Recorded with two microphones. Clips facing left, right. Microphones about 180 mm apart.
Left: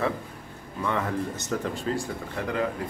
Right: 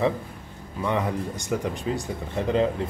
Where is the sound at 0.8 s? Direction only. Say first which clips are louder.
Right 2 dB; 15° right (ahead or behind).